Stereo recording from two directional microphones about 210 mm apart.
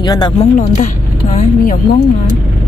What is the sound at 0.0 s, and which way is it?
Speech, 20° left (ahead or behind).